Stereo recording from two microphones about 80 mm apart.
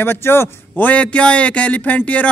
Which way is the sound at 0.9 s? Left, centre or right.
Centre.